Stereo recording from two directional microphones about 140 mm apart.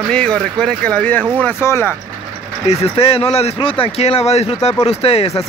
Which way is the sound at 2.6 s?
45° left (ahead or behind).